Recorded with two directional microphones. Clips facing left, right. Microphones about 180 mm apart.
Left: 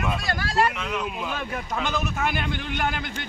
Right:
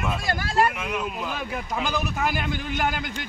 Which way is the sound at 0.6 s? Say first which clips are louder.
Even; 10° right (ahead or behind).